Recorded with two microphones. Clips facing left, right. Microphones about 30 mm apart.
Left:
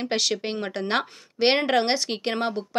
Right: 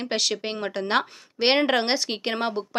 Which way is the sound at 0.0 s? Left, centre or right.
Centre.